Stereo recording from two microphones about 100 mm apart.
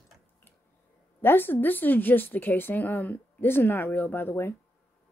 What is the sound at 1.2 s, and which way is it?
Speech, 20° left (ahead or behind).